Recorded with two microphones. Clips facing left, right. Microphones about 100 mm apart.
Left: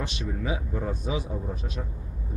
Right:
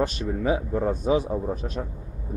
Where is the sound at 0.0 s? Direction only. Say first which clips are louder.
Right 7 dB; 45° right (ahead or behind).